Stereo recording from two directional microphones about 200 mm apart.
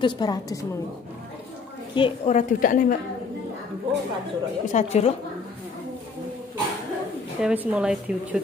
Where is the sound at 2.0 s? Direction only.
30° left (ahead or behind).